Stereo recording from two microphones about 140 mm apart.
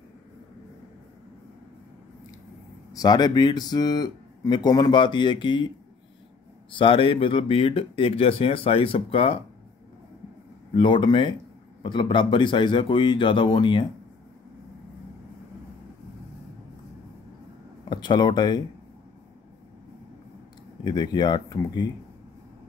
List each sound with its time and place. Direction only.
2.9 s speech: 25° left (ahead or behind)
6.7 s speech: 40° left (ahead or behind)
10.7 s speech: 35° left (ahead or behind)
17.8 s speech: 30° left (ahead or behind)
20.8 s speech: 30° left (ahead or behind)